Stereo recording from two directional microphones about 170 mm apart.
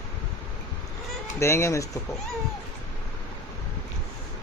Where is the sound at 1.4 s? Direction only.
15° left (ahead or behind).